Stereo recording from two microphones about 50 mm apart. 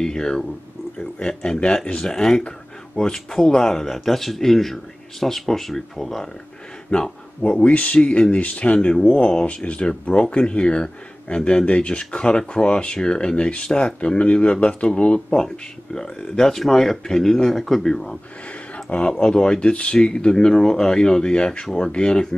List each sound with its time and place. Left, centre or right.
0.0 s speech: centre
6.9 s speech: left
18.9 s speech: left
19.2 s speech: centre